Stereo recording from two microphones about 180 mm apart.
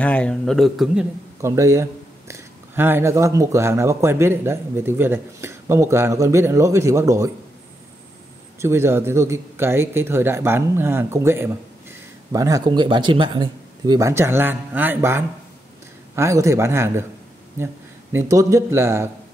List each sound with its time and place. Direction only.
0.0 s speech: 5° left (ahead or behind)
1.4 s speech: 15° right (ahead or behind)
8.5 s speech: 15° right (ahead or behind)
18.1 s speech: 15° right (ahead or behind)